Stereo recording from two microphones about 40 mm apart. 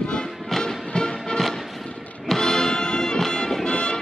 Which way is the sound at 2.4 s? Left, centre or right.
Centre.